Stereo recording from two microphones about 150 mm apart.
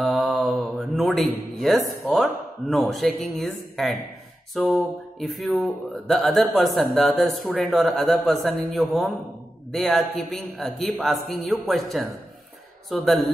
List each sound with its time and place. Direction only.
0.0 s mantra: centre (ahead or behind)
1.6 s speech: centre (ahead or behind)